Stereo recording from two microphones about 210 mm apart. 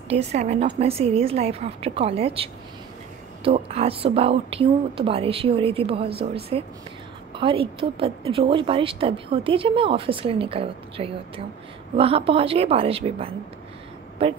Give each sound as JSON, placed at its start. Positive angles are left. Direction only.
{"t": 0.1, "sound": "a woman's voice", "side_deg": -30}
{"t": 3.4, "sound": "speech", "side_deg": -30}